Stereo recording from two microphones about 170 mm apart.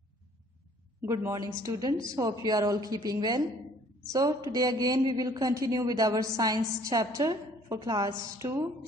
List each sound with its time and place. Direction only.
1.0 s a woman's voice: 15° right (ahead or behind)
8.4 s music: 20° right (ahead or behind)